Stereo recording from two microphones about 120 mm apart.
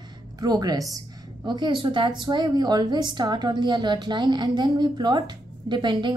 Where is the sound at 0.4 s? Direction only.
30° right (ahead or behind).